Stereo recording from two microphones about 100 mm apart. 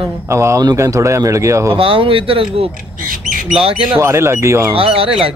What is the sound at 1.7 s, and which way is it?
Speech, 60° right (ahead or behind).